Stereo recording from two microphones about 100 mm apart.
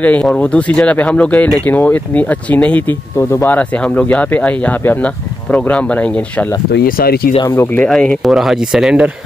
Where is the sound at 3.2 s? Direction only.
25° left (ahead or behind).